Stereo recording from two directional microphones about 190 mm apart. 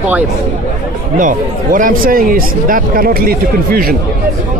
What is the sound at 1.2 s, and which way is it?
Speech, 45° right (ahead or behind).